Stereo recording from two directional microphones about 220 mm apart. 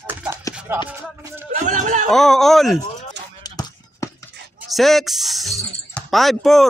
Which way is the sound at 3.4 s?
15° left (ahead or behind).